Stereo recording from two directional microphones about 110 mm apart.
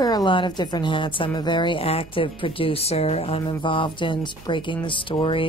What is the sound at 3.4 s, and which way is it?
Speech, 45° left (ahead or behind).